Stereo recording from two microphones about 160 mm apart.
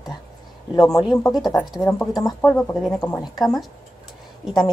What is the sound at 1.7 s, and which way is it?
Speech, 20° left (ahead or behind).